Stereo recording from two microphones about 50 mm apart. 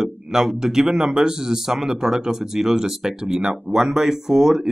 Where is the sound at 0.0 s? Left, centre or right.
Centre.